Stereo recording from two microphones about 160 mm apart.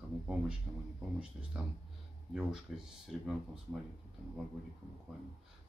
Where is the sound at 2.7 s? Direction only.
Centre (ahead or behind).